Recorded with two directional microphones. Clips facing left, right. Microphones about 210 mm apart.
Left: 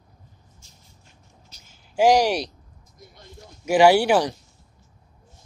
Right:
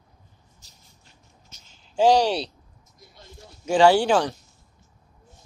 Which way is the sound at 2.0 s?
10° left (ahead or behind).